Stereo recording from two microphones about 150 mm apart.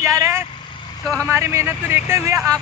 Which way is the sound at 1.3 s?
20° right (ahead or behind).